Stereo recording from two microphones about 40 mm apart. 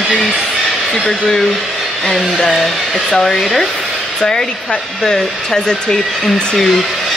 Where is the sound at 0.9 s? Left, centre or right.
Centre.